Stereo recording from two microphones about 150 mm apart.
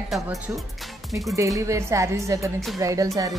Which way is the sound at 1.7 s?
20° right (ahead or behind).